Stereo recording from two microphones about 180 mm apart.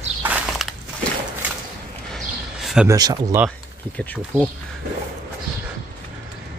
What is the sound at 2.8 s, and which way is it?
Speech, 20° right (ahead or behind).